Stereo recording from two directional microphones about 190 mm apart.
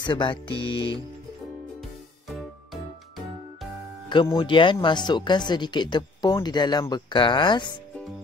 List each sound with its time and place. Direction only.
0.0 s speech: 25° left (ahead or behind)
2.2 s music: centre (ahead or behind)
4.1 s speech: 25° left (ahead or behind)